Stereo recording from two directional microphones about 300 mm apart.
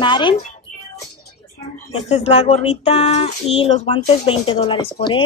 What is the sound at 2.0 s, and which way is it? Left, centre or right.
Speech, left.